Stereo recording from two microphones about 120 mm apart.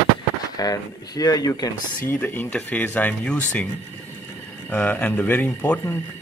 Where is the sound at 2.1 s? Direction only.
15° left (ahead or behind).